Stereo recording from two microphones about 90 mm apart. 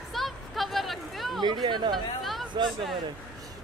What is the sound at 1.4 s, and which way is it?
Speech, 55° right (ahead or behind).